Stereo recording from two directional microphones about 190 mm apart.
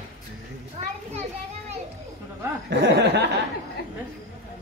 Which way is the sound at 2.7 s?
65° right (ahead or behind).